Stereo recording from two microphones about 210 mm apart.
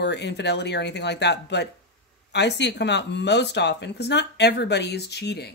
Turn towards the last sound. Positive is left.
turn(degrees=50)  # may be behind; listen again after turning